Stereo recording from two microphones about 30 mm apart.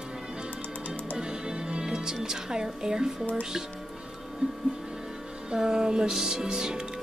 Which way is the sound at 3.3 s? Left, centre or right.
Centre.